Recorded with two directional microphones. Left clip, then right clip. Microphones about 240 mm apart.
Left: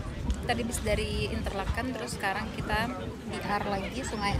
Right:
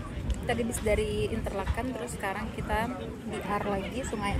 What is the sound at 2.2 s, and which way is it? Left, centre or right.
Speech, centre.